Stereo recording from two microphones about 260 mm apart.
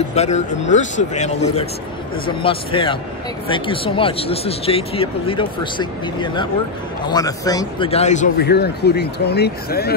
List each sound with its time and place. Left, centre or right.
0.1 s speech: left